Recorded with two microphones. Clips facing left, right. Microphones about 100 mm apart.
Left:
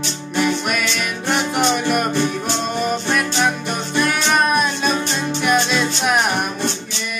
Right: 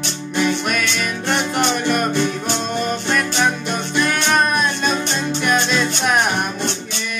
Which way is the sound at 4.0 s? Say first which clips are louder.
Even; 5° left (ahead or behind).